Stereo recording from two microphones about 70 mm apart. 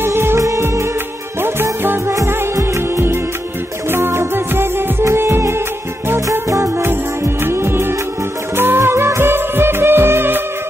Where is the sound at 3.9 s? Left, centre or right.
Right.